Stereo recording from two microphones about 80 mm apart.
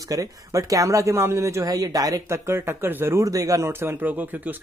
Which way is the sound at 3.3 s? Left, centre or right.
Right.